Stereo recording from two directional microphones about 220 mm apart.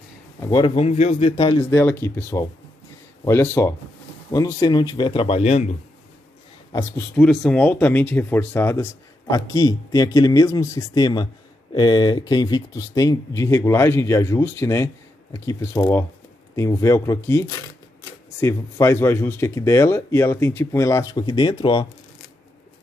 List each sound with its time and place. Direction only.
0.4 s a man's voice: 20° left (ahead or behind)
6.7 s speech: 10° left (ahead or behind)